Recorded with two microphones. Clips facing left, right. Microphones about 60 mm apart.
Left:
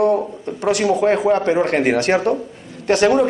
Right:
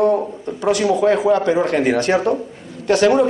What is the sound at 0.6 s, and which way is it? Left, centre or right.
A woman's voice, left.